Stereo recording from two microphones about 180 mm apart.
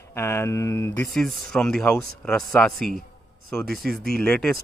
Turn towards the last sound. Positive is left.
turn(degrees=5)  # may be behind; listen again after turning